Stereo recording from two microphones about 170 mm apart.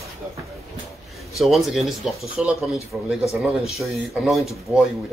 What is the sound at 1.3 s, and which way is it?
Speech, centre (ahead or behind).